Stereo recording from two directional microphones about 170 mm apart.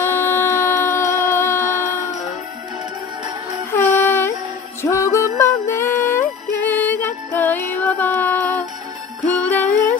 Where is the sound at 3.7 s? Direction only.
15° left (ahead or behind).